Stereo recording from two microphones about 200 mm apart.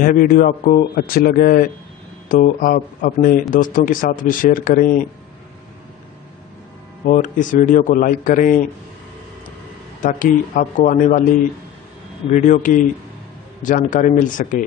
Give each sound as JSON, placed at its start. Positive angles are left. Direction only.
{"t": 0.0, "sound": "speech", "side_deg": 45}
{"t": 7.1, "sound": "a man's voice", "side_deg": 40}
{"t": 10.0, "sound": "a man's voice", "side_deg": 40}
{"t": 12.3, "sound": "a man's voice", "side_deg": 40}